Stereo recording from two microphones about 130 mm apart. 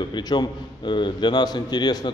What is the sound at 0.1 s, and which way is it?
A man's voice, 35° left (ahead or behind).